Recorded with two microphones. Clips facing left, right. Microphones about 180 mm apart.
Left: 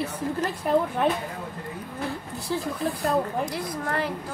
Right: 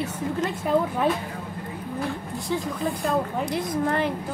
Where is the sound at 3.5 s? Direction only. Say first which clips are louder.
Right 5 dB; 20° right (ahead or behind).